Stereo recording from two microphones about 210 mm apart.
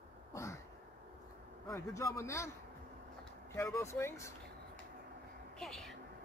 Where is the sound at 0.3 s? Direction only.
15° left (ahead or behind).